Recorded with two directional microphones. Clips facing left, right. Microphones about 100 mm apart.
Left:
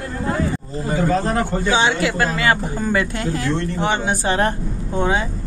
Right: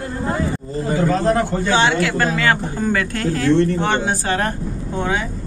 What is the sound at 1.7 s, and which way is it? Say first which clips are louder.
Speech: right 1 dB; 5° left (ahead or behind).